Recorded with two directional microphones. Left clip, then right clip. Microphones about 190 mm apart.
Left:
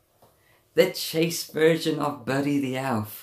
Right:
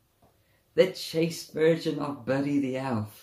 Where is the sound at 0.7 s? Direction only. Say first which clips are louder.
Left 2 dB; 10° left (ahead or behind).